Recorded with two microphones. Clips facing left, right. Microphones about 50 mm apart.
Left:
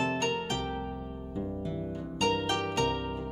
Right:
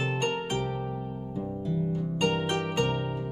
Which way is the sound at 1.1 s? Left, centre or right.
Centre.